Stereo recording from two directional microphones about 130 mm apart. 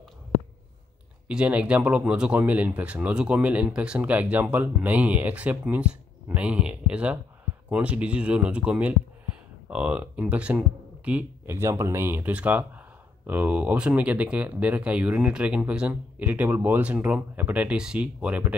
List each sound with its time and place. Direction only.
1.2 s speech: 10° right (ahead or behind)